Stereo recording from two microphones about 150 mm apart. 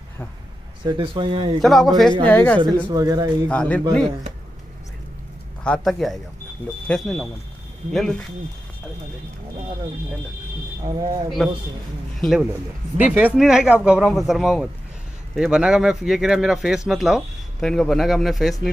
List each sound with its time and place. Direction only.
0.8 s speech: 35° right (ahead or behind)
1.6 s speech: centre (ahead or behind)
2.6 s speech: 25° right (ahead or behind)
3.4 s speech: 10° left (ahead or behind)
5.6 s speech: 5° left (ahead or behind)
10.8 s speech: 25° right (ahead or behind)
12.2 s a man's voice: centre (ahead or behind)